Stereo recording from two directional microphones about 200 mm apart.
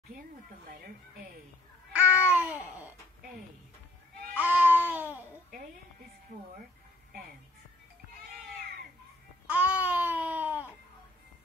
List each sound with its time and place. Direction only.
1.9 s cat: 5° right (ahead or behind)
4.4 s babbling: 5° right (ahead or behind)
7.1 s music: 50° right (ahead or behind)
9.5 s a sound: 5° right (ahead or behind)